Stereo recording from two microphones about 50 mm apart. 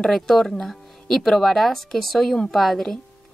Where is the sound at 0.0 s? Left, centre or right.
Centre.